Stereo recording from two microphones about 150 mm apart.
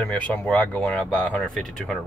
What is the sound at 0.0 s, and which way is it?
Speech, 10° left (ahead or behind).